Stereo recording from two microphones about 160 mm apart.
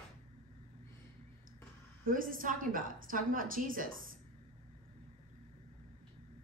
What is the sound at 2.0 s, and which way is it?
A woman's voice, 60° right (ahead or behind).